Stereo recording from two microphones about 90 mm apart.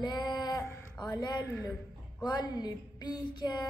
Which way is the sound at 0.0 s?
50° left (ahead or behind).